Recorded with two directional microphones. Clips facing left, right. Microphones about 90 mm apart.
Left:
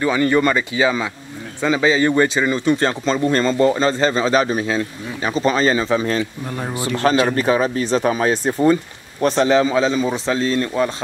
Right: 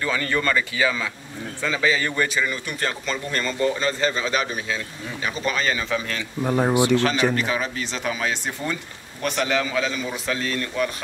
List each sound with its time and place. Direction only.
0.0 s speech: 20° left (ahead or behind)
6.4 s speech: 15° right (ahead or behind)
7.3 s speech: 35° left (ahead or behind)